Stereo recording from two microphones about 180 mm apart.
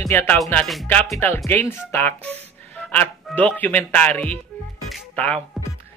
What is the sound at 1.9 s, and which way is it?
Music, 10° left (ahead or behind).